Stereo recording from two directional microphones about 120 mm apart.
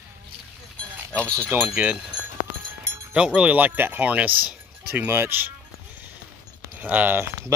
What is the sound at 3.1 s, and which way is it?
Speech, 10° right (ahead or behind).